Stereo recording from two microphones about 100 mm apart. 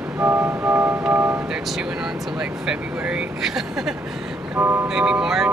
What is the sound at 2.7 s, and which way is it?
Speech, 10° right (ahead or behind).